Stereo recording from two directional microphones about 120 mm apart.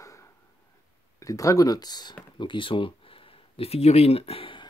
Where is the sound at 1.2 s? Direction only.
30° left (ahead or behind).